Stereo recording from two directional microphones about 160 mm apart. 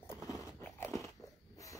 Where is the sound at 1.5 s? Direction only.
20° left (ahead or behind).